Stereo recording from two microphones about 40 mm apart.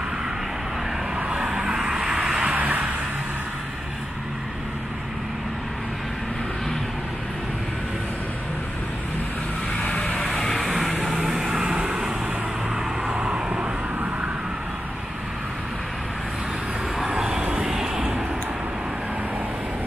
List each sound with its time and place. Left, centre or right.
1.1 s vehicle: right
2.5 s vehicle: right
9.8 s vehicle: left
10.2 s vehicle: centre; by 12.1 s right
13.1 s vehicle: right
17.1 s vehicle: centre
17.4 s vehicle: right
17.6 s vehicle: centre